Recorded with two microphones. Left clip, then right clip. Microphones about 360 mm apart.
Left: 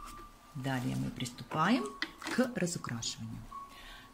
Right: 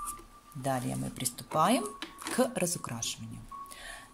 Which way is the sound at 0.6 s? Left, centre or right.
Centre.